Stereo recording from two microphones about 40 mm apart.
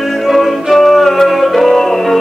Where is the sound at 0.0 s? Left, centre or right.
Centre.